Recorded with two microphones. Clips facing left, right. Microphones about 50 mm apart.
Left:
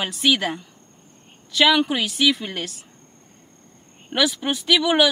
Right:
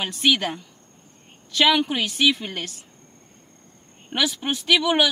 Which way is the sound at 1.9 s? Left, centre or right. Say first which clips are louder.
Left 1 dB; centre.